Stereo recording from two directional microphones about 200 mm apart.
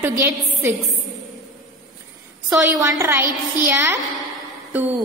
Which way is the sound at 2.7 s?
15° right (ahead or behind).